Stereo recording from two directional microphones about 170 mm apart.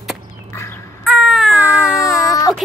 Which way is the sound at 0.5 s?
15° left (ahead or behind).